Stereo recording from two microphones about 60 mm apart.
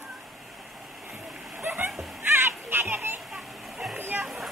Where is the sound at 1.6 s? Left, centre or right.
Right.